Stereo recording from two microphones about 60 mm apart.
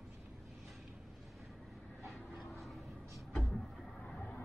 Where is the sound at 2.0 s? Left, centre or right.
Centre.